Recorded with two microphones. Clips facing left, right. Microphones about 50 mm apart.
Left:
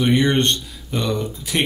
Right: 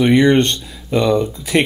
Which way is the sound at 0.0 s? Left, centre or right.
Right.